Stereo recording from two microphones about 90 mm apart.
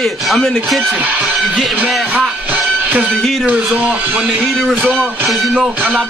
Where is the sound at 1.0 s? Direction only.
15° right (ahead or behind).